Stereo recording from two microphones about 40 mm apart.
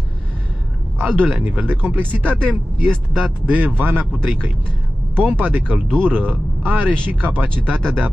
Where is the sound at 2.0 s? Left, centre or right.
Right.